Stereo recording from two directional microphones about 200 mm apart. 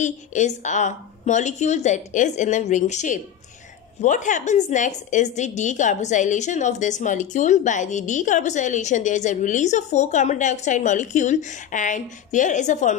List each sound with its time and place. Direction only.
0.0 s a woman's voice: 35° left (ahead or behind)